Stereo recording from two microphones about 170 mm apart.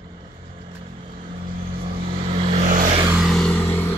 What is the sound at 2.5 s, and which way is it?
Vehicle, 45° right (ahead or behind).